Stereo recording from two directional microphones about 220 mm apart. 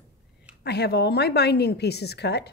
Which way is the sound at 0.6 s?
50° left (ahead or behind).